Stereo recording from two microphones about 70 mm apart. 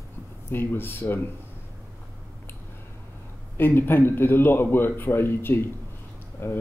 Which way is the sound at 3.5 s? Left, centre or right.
Left.